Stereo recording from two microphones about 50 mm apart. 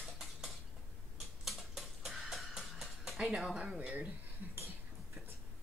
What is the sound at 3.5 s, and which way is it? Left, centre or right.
Speech, centre.